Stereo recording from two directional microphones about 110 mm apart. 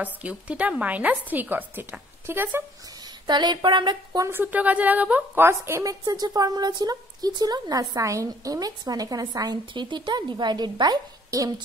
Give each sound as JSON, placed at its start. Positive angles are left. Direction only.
{"t": 0.0, "sound": "speech", "side_deg": -10}
{"t": 3.3, "sound": "speech", "side_deg": -45}
{"t": 4.2, "sound": "a woman's voice", "side_deg": -20}